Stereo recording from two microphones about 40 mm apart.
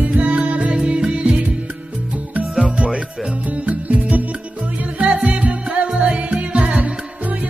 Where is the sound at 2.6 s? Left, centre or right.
Right.